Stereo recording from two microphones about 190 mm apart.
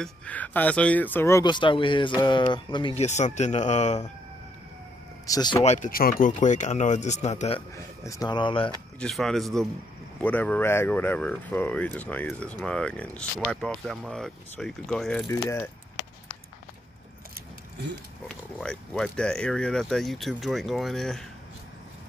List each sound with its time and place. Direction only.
0.0 s speech: 5° left (ahead or behind); by 4.1 s 35° left (ahead or behind)
5.2 s speech: 20° left (ahead or behind)
5.6 s speech: 35° left (ahead or behind)
5.9 s speech: 50° left (ahead or behind); by 7.6 s 35° left (ahead or behind)
7.7 s speech: 15° left (ahead or behind)
9.0 s speech: centre (ahead or behind)
18.3 s speech: 5° left (ahead or behind)